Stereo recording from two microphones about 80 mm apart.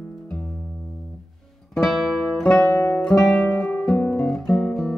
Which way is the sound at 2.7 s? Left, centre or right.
Left.